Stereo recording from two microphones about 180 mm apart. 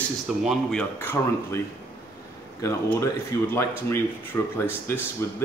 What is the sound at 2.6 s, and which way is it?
Speech, 15° left (ahead or behind).